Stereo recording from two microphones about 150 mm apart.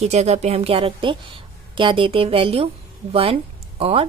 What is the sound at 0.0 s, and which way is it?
A woman's voice, 45° right (ahead or behind).